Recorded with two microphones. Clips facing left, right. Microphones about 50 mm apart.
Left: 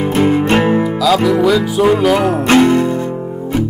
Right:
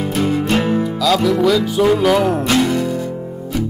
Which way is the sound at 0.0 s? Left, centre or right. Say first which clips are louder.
Left 5 dB; left.